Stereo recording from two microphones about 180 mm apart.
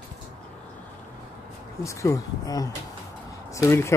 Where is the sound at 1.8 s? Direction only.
15° left (ahead or behind).